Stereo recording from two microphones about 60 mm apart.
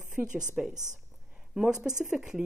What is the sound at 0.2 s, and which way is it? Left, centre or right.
A woman's voice, centre.